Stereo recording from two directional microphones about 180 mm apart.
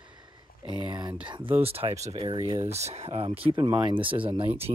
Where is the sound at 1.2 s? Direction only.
30° right (ahead or behind).